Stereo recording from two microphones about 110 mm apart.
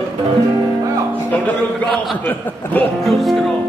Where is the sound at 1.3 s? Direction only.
15° left (ahead or behind).